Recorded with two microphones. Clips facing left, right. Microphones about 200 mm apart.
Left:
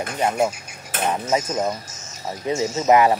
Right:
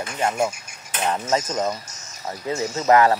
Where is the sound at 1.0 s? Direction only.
10° left (ahead or behind).